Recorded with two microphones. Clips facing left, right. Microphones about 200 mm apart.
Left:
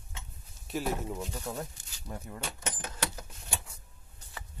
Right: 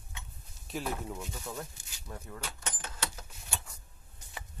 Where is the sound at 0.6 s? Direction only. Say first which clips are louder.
Left 3 dB; centre (ahead or behind).